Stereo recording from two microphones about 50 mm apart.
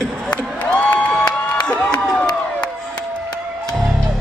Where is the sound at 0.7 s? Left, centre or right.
Left.